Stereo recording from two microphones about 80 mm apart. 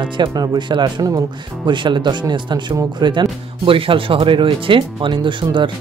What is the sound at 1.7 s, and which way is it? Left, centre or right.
Speech, right.